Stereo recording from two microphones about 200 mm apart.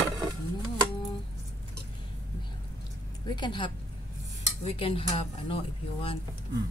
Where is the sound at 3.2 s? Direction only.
20° left (ahead or behind).